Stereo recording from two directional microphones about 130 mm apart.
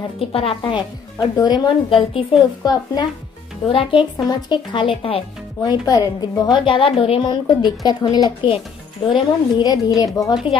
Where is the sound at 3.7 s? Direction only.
40° left (ahead or behind).